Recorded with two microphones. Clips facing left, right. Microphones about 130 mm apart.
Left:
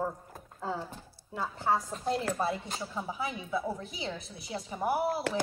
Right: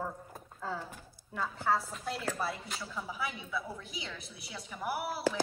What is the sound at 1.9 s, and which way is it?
A woman's voice, 25° left (ahead or behind).